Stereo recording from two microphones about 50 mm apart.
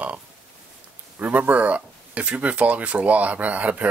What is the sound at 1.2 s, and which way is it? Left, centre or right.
Speech, right.